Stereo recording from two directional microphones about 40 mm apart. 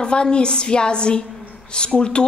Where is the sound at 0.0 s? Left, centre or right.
Left.